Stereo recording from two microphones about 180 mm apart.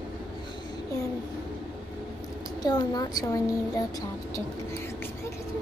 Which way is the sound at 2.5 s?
20° left (ahead or behind).